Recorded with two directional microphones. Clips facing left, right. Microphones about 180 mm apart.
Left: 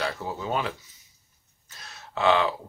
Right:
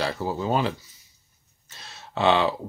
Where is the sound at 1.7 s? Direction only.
25° right (ahead or behind).